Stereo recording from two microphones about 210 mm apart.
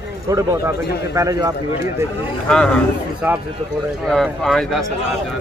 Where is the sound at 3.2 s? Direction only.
10° right (ahead or behind).